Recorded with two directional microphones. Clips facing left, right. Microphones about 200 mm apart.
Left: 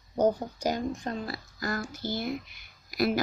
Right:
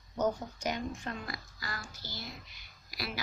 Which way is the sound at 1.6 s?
45° left (ahead or behind).